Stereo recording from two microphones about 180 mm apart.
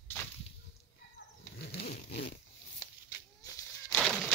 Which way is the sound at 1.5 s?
65° left (ahead or behind).